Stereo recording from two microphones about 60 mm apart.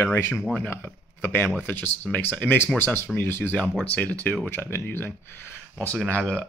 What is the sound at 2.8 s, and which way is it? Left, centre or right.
Speech, left.